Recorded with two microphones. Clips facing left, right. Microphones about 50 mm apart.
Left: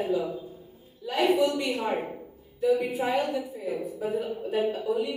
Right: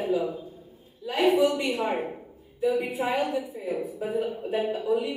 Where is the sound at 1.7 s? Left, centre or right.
Centre.